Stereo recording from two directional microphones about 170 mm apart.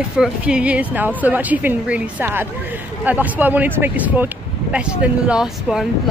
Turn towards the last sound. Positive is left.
turn(degrees=-5)  # may be behind; listen again after turning